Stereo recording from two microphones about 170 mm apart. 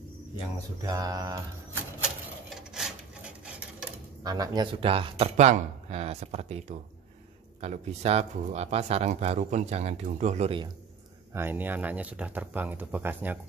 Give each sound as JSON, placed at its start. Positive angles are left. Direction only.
{"t": 0.8, "sound": "mantra", "side_deg": -20}
{"t": 2.0, "sound": "a sound", "side_deg": 0}
{"t": 4.2, "sound": "mantra", "side_deg": -20}
{"t": 4.7, "sound": "speech", "side_deg": -35}
{"t": 7.6, "sound": "speech", "side_deg": -40}
{"t": 11.3, "sound": "speech", "side_deg": -10}